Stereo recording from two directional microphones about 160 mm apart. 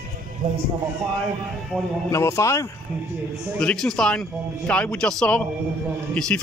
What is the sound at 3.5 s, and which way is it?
Speech, 5° left (ahead or behind).